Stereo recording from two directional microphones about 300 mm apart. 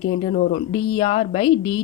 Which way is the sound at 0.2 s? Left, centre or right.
Left.